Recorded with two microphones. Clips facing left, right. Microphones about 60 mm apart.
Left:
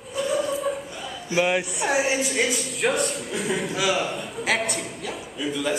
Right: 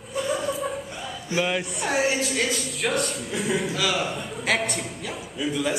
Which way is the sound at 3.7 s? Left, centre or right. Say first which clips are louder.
Left 2 dB; centre.